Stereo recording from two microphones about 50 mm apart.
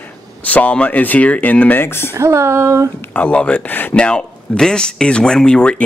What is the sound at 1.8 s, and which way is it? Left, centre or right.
Speech, left.